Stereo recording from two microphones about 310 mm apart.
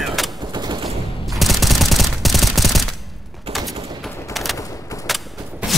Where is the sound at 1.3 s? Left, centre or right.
Centre.